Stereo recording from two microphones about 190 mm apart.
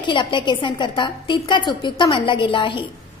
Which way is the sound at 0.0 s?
25° left (ahead or behind).